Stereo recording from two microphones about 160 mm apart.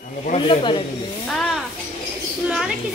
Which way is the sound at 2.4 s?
5° right (ahead or behind).